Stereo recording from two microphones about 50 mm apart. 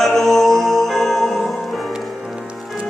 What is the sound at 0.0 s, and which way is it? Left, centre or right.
Music, centre.